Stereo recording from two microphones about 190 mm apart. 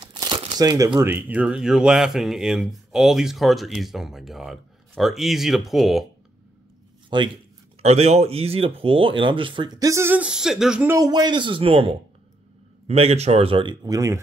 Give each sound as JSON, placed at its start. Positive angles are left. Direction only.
{"t": 0.0, "sound": "speech", "side_deg": -25}
{"t": 7.1, "sound": "speech", "side_deg": -25}
{"t": 11.0, "sound": "speech", "side_deg": -20}